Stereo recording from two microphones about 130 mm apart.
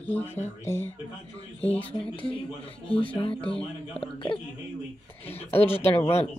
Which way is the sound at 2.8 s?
45° left (ahead or behind).